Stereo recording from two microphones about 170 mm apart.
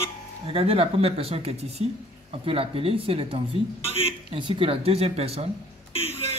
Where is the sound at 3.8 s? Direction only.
35° left (ahead or behind).